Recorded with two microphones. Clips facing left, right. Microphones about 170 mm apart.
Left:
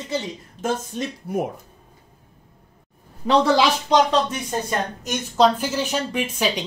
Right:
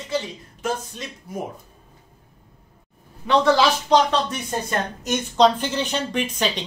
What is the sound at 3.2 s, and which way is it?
Speech, 35° left (ahead or behind).